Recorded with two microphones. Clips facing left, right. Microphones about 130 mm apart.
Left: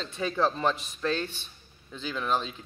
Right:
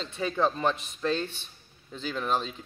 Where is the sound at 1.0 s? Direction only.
30° right (ahead or behind).